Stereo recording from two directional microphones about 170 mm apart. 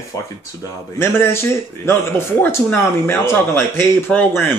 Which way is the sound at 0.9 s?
15° left (ahead or behind).